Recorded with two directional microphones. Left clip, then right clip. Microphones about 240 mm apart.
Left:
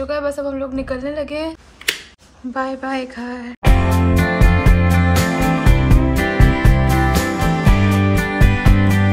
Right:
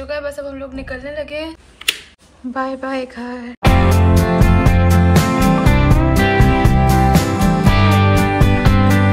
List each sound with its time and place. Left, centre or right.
0.0 s a woman's voice: left
2.5 s a sound: centre
3.7 s music: right